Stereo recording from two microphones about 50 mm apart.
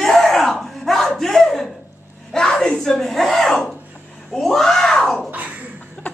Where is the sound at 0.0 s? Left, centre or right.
Centre.